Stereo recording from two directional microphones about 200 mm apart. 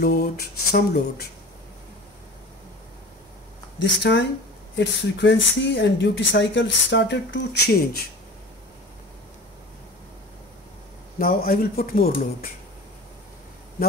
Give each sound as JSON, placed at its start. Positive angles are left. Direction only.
{"t": 0.0, "sound": "speech", "side_deg": 55}
{"t": 3.8, "sound": "speech", "side_deg": 60}
{"t": 11.1, "sound": "speech", "side_deg": 45}